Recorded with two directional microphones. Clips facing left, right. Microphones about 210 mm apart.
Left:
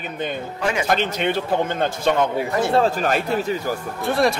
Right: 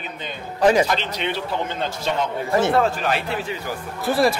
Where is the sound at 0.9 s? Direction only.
50° left (ahead or behind).